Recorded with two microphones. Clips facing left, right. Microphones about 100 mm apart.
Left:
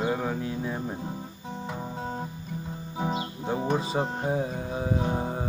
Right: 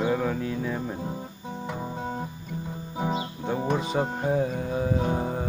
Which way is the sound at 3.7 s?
25° left (ahead or behind).